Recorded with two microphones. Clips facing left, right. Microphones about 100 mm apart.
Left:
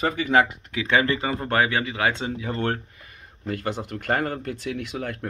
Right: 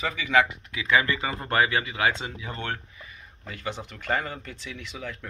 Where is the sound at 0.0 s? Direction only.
40° left (ahead or behind).